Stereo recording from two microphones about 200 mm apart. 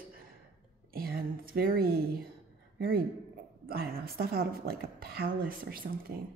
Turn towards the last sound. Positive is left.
turn(degrees=-45)  # may be behind; listen again after turning